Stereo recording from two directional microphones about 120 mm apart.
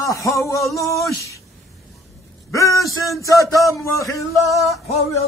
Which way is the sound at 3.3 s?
30° left (ahead or behind).